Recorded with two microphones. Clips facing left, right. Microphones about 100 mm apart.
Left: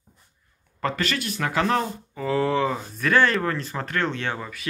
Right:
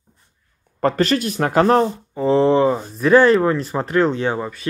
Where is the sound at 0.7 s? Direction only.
40° right (ahead or behind).